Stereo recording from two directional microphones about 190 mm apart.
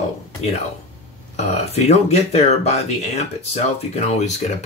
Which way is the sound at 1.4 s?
35° left (ahead or behind).